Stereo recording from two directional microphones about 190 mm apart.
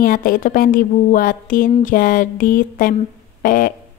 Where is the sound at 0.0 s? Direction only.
50° left (ahead or behind).